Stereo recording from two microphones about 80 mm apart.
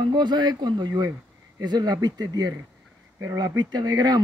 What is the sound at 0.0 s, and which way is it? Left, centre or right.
Speech, right.